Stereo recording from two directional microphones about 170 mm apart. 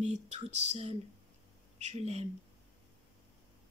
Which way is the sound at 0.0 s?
40° right (ahead or behind).